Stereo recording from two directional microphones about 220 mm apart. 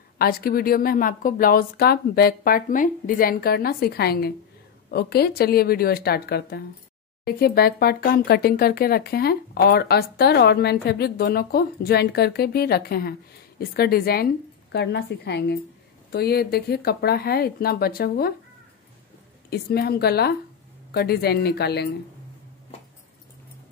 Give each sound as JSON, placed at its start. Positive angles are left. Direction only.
{"t": 0.2, "sound": "speech", "side_deg": 45}
{"t": 19.5, "sound": "speech", "side_deg": 45}